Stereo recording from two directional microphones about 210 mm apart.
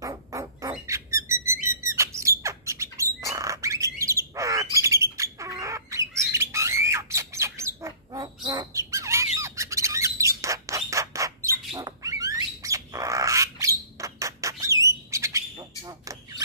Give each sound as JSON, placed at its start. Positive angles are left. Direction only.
{"t": 0.0, "sound": "bird", "side_deg": -15}
{"t": 11.7, "sound": "dog", "side_deg": -15}
{"t": 15.8, "sound": "a sound", "side_deg": -15}